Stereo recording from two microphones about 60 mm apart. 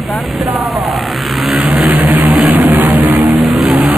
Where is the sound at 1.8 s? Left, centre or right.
Right.